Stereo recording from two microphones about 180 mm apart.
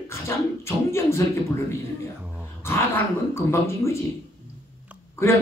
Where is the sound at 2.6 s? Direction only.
15° left (ahead or behind).